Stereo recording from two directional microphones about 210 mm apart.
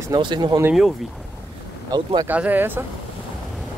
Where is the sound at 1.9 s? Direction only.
20° right (ahead or behind).